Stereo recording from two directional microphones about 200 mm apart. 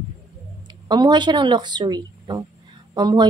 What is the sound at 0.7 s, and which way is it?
Speech, 20° right (ahead or behind).